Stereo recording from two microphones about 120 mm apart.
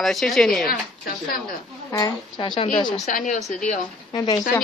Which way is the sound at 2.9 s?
85° left.